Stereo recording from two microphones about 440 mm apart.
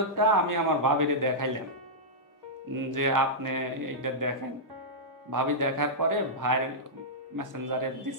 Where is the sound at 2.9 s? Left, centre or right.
Right.